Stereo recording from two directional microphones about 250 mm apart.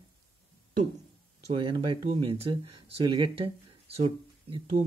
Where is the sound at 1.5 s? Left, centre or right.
Right.